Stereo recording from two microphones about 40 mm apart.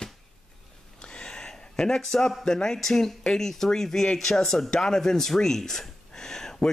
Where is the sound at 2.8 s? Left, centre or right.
Centre.